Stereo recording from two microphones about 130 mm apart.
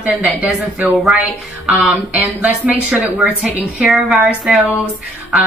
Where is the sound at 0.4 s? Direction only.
10° right (ahead or behind).